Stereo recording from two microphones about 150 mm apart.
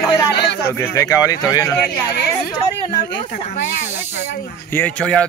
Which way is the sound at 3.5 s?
75° left (ahead or behind).